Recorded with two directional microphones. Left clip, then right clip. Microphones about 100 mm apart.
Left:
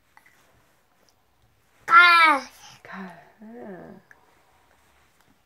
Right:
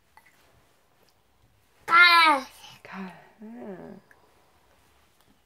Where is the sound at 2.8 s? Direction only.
25° left (ahead or behind).